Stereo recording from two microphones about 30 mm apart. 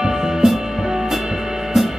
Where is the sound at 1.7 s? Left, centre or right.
Centre.